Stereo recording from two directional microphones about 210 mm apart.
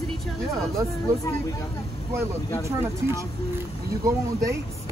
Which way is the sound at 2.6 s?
10° right (ahead or behind).